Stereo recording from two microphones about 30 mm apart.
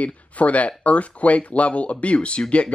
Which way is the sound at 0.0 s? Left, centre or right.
Left.